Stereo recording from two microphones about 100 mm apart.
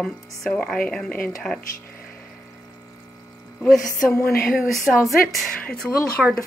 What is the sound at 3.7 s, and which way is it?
Speech, 30° left (ahead or behind).